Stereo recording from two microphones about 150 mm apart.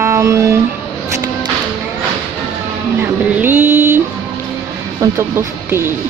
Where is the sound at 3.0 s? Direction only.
15° right (ahead or behind).